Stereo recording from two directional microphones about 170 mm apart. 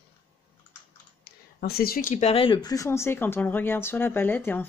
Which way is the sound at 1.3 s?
70° left (ahead or behind).